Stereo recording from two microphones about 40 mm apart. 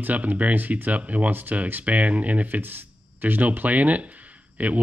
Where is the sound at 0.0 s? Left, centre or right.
Right.